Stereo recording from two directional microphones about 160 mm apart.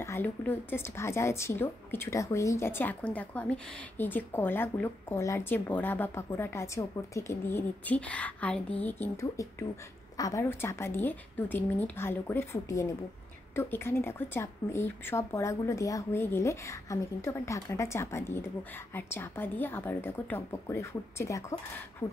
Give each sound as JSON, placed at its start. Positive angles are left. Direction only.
{"t": 0.0, "sound": "a woman's voice", "side_deg": 15}